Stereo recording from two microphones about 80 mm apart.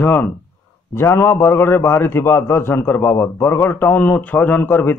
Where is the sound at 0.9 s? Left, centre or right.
Left.